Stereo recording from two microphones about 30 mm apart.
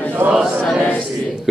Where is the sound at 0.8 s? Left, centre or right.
Left.